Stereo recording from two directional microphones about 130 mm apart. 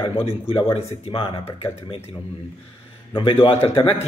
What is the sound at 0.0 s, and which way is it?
Speech, 45° left (ahead or behind).